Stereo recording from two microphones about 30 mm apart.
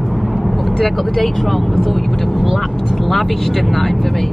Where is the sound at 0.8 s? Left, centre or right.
Centre.